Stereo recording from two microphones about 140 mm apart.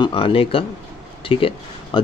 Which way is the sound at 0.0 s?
40° left (ahead or behind).